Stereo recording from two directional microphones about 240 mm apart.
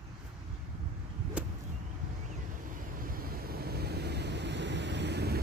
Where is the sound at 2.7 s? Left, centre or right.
Right.